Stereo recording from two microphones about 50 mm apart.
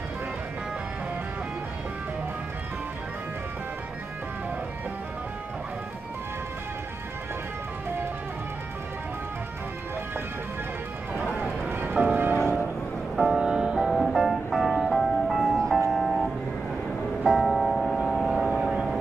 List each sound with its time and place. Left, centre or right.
11.7 s music: right
13.2 s music: centre
13.9 s music: centre
18.0 s a sound: centre
18.4 s vehicle: centre